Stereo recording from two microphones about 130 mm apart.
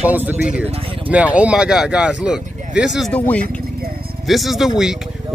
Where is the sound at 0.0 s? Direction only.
15° right (ahead or behind).